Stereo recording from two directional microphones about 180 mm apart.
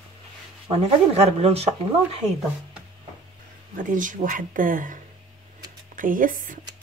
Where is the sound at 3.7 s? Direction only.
45° right (ahead or behind).